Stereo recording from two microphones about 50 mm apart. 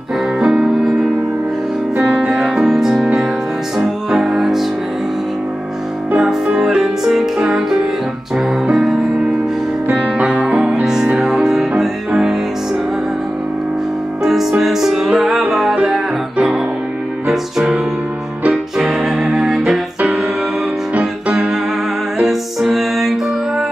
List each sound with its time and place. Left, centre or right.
0.4 s music: centre
2.0 s music: right
2.4 s music: centre
6.1 s music: centre
9.8 s music: right
10.7 s music: centre
14.2 s music: centre
17.3 s music: centre
18.8 s music: centre
19.1 s music: centre
20.0 s music: right
21.0 s music: centre
22.2 s music: centre